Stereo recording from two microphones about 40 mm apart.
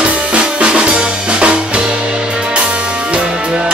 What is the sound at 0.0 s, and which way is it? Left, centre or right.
Drum kit, right.